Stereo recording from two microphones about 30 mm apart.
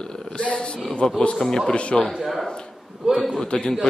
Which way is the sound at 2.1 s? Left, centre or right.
Centre.